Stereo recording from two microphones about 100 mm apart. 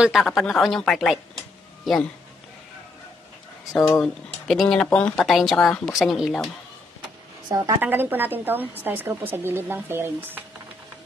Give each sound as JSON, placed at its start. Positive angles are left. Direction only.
{"t": 0.0, "sound": "speech", "side_deg": -5}
{"t": 4.0, "sound": "speech", "side_deg": 5}
{"t": 7.4, "sound": "a woman's voice", "side_deg": -40}
{"t": 7.8, "sound": "a woman's voice", "side_deg": -20}